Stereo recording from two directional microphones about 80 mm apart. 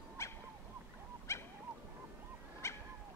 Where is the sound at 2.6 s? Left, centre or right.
Left.